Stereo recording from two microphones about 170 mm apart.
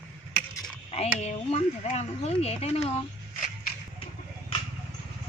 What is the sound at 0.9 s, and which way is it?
Speech, 35° left (ahead or behind).